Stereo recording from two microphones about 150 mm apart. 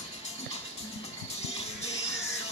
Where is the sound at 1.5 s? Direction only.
45° left (ahead or behind).